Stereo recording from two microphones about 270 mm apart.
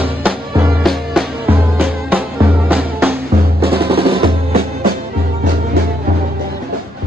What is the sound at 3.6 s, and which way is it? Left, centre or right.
Percussion, right.